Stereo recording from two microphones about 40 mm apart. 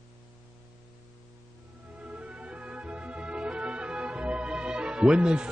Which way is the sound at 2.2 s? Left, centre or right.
Right.